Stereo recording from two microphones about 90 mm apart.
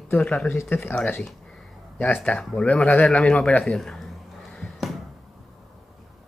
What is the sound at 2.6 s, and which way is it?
Speech, 15° left (ahead or behind).